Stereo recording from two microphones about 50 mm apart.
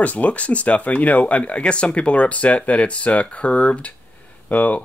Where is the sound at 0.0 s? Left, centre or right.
Left.